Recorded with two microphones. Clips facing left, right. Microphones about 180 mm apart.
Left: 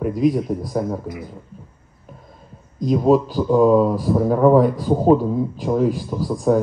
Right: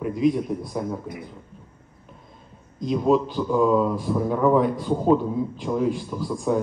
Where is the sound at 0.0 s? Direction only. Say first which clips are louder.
Left 3 dB; 40° left (ahead or behind).